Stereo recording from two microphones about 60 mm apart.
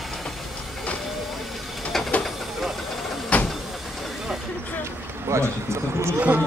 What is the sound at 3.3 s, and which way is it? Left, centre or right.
Vehicle, left.